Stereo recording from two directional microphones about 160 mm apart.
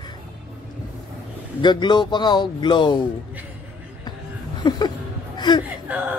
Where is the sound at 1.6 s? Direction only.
30° left (ahead or behind).